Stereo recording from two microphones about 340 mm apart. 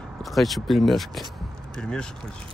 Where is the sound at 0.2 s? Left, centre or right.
Centre.